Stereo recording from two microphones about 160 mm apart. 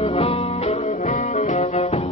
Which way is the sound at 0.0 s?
35° left (ahead or behind).